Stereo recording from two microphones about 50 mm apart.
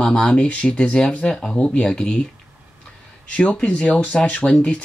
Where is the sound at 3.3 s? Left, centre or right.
Left.